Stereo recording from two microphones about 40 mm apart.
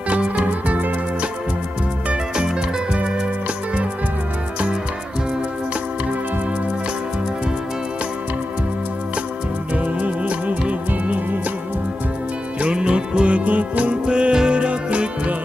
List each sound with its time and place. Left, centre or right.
0.1 s music: right
2.3 s music: right
9.8 s music: right
12.5 s music: right
14.0 s music: right